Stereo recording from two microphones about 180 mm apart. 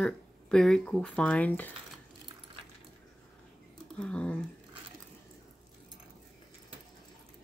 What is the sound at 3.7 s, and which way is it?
Speech, 5° left (ahead or behind).